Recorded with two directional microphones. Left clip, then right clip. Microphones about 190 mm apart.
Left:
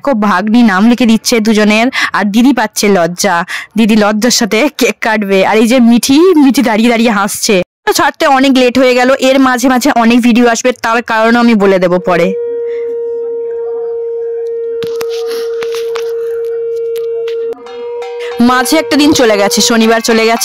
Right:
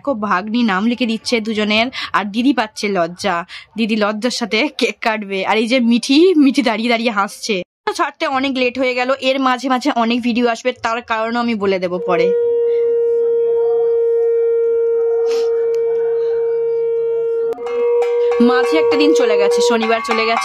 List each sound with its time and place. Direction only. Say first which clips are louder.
0.3 s speech: left 6 dB; 55° left (ahead or behind)
18.4 s speech: left 7 dB; 60° left (ahead or behind)